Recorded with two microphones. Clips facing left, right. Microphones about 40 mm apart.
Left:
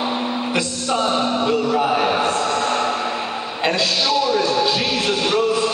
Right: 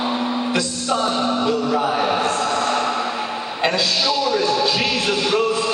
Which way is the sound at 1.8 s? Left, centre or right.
Centre.